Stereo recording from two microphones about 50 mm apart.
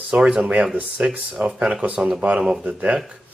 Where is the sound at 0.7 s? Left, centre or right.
Right.